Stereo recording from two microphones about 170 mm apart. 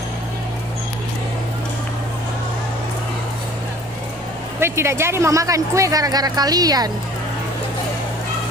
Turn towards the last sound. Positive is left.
turn(degrees=-20)  # may be behind; listen again after turning